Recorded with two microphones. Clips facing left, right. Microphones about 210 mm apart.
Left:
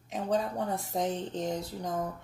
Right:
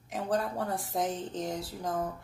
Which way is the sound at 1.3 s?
40° left (ahead or behind).